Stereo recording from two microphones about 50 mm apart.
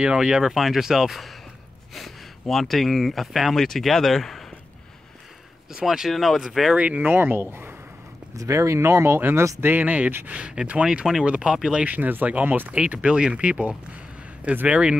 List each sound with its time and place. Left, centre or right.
0.0 s speech: centre
0.4 s speech: centre
5.7 s speech: centre
6.7 s speech: right
7.1 s speech: right
8.4 s speech: right
9.6 s speech: right
10.3 s speech: centre
14.7 s speech: right